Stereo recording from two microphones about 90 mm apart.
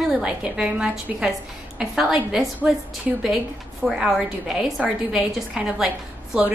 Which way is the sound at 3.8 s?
Centre (ahead or behind).